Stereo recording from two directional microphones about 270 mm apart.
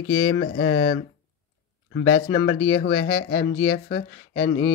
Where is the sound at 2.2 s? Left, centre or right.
Left.